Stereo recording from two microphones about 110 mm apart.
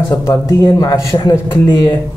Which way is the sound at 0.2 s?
25° left (ahead or behind).